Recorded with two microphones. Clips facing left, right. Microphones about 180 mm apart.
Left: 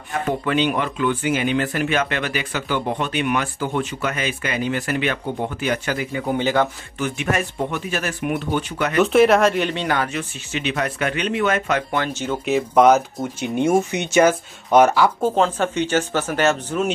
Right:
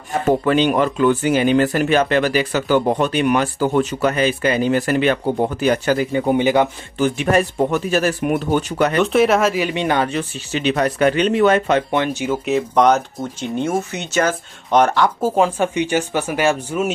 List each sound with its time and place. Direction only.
0.2 s speech: 35° right (ahead or behind)
6.2 s speech: 20° right (ahead or behind)
7.0 s speech: 35° right (ahead or behind)
9.0 s speech: centre (ahead or behind)
9.8 s speech: 20° right (ahead or behind)
10.0 s speech: 35° right (ahead or behind); by 12.4 s 15° right (ahead or behind)
12.4 s speech: centre (ahead or behind)
13.6 s speech: 15° left (ahead or behind)
15.2 s speech: 10° right (ahead or behind)